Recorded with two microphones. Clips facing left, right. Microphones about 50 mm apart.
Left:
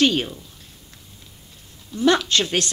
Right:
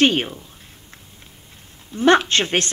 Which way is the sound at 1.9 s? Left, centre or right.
Right.